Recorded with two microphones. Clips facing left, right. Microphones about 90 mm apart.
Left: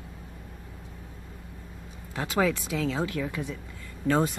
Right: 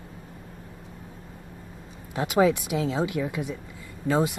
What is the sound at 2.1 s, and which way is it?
Speech, 20° right (ahead or behind).